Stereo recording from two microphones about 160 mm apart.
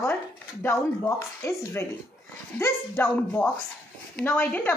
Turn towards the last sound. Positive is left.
turn(degrees=10)  # may be behind; listen again after turning